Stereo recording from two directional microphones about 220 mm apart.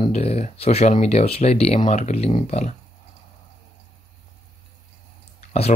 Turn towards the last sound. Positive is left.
turn(degrees=30)  # may be behind; listen again after turning